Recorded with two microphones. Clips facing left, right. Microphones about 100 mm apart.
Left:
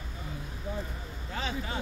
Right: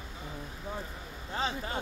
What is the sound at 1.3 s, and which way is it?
Vehicle, 35° right (ahead or behind).